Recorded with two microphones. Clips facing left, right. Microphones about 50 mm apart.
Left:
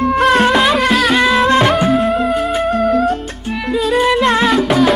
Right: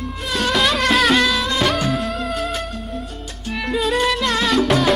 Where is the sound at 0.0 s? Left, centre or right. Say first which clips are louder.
Left 16 dB; left.